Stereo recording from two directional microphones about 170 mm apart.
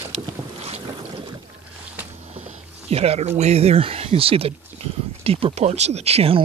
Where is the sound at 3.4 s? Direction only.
40° right (ahead or behind).